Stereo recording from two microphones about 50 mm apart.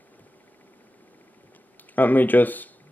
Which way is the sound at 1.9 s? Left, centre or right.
Left.